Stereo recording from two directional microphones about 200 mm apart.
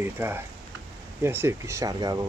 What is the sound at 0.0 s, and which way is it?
Speech, 10° right (ahead or behind).